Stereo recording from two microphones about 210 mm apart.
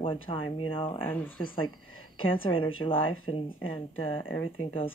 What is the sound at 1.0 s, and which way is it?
Speech, 10° left (ahead or behind).